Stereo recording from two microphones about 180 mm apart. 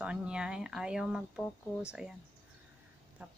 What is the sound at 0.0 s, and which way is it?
Speech, 5° right (ahead or behind).